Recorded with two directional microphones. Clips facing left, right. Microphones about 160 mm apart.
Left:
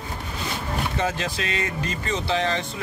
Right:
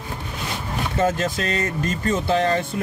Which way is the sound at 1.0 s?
45° right (ahead or behind).